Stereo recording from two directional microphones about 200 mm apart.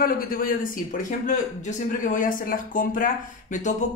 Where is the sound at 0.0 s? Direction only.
45° left (ahead or behind).